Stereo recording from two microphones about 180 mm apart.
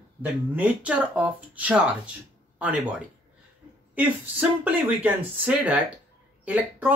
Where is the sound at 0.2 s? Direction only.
10° right (ahead or behind).